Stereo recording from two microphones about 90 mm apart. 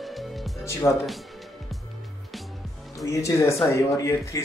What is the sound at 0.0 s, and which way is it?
Music, centre (ahead or behind).